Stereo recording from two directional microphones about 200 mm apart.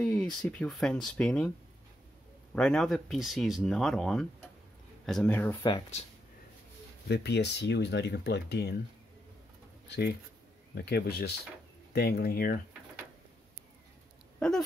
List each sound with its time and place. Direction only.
0.0 s speech: 5° left (ahead or behind)
2.5 s speech: 5° left (ahead or behind)
5.6 s speech: 20° left (ahead or behind)
7.1 s speech: 55° left (ahead or behind)
9.8 s speech: 55° left (ahead or behind)